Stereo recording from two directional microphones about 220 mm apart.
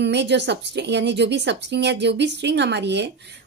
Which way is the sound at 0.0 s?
50° right (ahead or behind).